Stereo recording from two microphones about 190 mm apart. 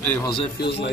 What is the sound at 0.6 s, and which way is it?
Speech, 60° left (ahead or behind).